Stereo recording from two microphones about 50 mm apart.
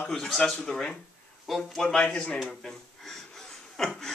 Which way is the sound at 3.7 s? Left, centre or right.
Centre.